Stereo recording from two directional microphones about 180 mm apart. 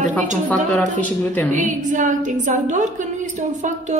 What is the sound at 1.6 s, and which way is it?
A woman's voice, 45° right (ahead or behind).